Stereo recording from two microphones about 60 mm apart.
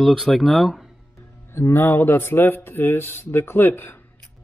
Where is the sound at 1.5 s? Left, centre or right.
Left.